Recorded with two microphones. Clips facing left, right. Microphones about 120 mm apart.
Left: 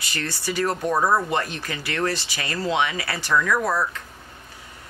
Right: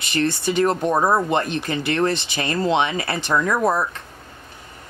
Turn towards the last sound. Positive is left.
turn(degrees=-25)  # may be behind; listen again after turning